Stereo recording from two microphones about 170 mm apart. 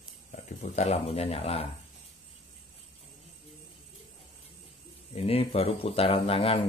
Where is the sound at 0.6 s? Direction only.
40° left (ahead or behind).